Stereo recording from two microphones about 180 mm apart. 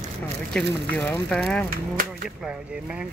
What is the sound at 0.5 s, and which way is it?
Speech, 10° left (ahead or behind).